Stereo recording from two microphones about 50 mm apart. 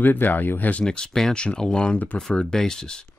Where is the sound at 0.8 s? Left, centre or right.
Centre.